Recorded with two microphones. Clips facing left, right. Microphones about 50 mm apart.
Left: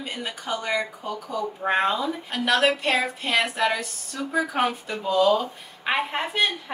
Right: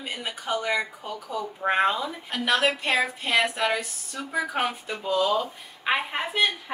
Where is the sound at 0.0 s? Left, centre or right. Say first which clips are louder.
Left 1 dB; centre.